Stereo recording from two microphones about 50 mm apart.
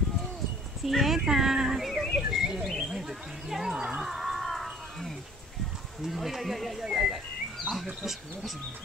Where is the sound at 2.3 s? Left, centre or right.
Centre.